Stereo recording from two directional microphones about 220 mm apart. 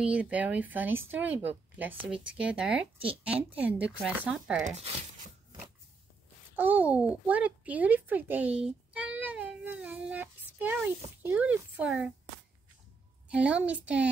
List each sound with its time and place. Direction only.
0.0 s speech: 5° right (ahead or behind)
4.6 s speech: 30° right (ahead or behind)
6.5 s a child's voice: 10° right (ahead or behind)
13.3 s speech: 5° right (ahead or behind)